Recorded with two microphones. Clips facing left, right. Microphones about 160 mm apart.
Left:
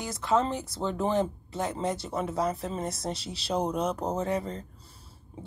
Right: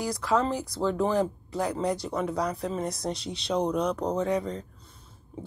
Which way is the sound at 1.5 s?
Centre (ahead or behind).